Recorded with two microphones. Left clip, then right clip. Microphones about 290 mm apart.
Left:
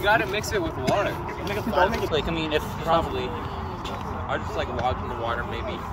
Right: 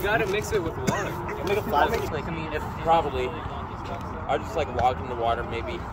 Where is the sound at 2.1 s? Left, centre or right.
Left.